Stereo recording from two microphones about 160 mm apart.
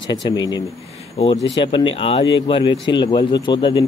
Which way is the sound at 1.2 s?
35° left (ahead or behind).